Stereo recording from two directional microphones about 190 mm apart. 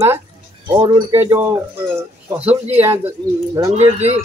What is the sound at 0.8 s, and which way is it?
Speech, 15° right (ahead or behind).